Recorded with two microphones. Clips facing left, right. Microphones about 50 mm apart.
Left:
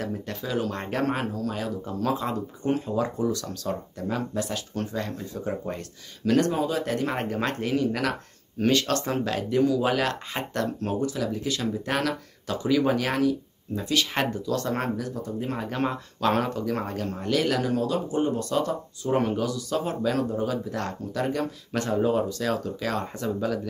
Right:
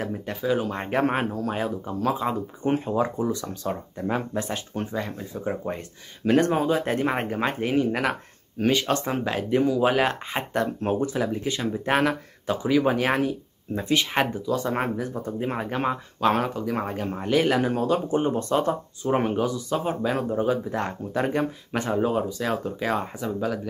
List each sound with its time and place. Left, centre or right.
0.0 s speech: centre; by 1.7 s right
1.9 s speech: centre
2.7 s speech: right
4.9 s speech: centre; by 14.0 s right
14.1 s speech: centre